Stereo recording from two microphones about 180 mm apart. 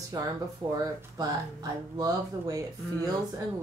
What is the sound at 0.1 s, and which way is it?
Speech, 20° right (ahead or behind).